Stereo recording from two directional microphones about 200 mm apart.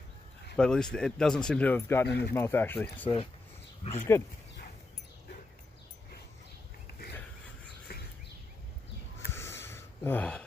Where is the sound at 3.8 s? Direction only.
30° left (ahead or behind).